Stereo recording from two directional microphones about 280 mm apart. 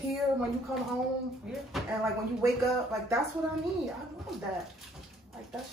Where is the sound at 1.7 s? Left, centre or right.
Centre.